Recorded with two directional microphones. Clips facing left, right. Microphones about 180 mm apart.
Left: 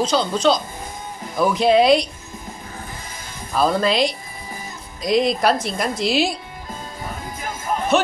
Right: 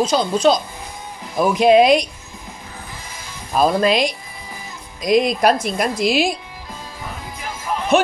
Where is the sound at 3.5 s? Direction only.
15° right (ahead or behind).